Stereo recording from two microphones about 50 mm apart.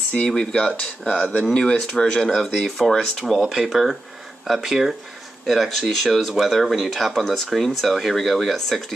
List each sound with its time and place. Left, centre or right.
0.3 s speech: centre
2.3 s speech: centre
3.3 s speech: centre